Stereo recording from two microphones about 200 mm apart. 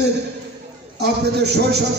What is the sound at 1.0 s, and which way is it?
Speech, 55° right (ahead or behind).